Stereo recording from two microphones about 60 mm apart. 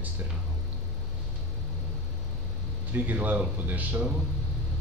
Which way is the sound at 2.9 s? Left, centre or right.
Right.